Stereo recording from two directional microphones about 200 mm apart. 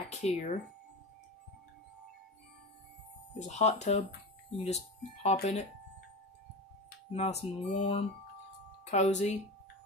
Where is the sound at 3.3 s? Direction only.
35° left (ahead or behind).